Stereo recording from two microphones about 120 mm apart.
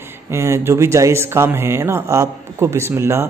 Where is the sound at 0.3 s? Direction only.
20° right (ahead or behind).